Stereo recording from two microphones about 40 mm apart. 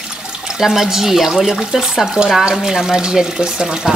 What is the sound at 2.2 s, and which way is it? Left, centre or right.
Speech, right.